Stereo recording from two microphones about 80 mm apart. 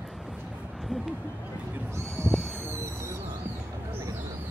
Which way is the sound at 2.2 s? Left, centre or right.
Right.